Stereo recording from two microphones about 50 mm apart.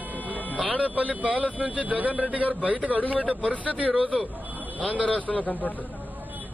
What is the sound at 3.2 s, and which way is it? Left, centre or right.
Speech, centre.